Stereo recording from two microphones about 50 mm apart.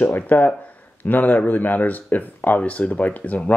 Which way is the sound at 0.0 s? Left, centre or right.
Left.